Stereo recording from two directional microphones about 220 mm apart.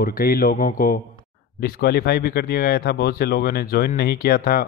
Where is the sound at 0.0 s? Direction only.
40° left (ahead or behind).